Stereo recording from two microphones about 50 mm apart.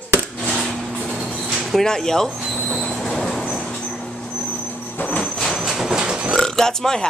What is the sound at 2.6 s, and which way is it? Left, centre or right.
Train, centre.